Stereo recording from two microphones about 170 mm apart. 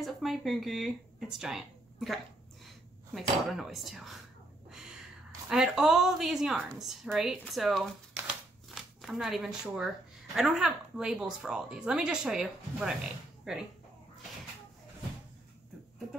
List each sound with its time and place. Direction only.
0.0 s speech: centre (ahead or behind)
4.6 s a sound: 5° right (ahead or behind)
5.5 s a woman's voice: centre (ahead or behind)